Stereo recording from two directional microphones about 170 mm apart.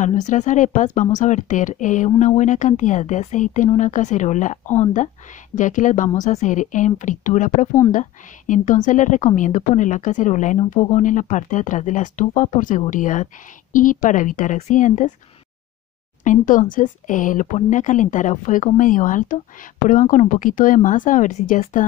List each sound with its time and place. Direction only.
0.0 s speech: 45° left (ahead or behind)
16.3 s speech: 50° left (ahead or behind)